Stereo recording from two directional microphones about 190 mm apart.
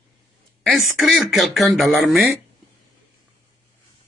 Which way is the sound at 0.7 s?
Centre (ahead or behind).